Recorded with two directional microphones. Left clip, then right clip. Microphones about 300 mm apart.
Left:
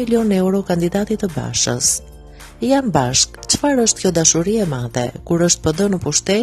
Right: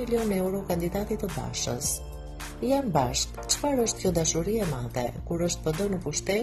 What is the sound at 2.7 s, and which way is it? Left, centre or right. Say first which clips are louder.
Speech: left 9 dB; left.